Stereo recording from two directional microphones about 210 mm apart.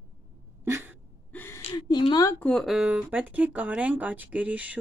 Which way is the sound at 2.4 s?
Centre (ahead or behind).